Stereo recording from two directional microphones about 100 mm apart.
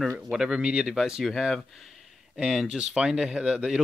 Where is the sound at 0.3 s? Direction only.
5° right (ahead or behind).